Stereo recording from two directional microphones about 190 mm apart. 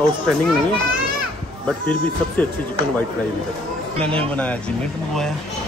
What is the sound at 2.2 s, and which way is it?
Speech, 5° left (ahead or behind).